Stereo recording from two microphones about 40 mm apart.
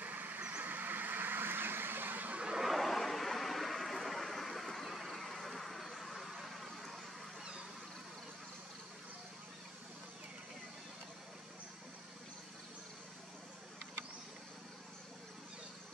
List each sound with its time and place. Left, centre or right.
0.0 s vehicle: right
0.4 s vehicle: right
0.7 s vehicle: right
2.6 s vehicle: centre